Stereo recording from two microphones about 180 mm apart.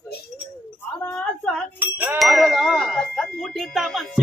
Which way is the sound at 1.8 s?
10° right (ahead or behind).